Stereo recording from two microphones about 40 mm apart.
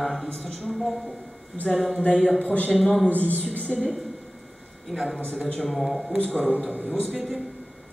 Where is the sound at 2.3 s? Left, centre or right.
Left.